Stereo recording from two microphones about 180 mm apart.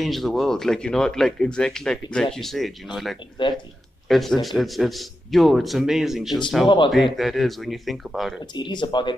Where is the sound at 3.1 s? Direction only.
25° left (ahead or behind).